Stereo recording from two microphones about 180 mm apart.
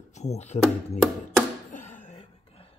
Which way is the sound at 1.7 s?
45° left (ahead or behind).